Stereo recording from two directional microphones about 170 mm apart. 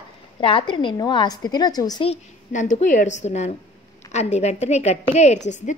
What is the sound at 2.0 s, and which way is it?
A woman's voice, 45° left (ahead or behind).